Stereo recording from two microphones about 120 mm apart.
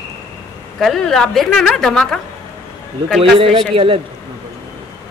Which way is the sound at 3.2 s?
50° right (ahead or behind).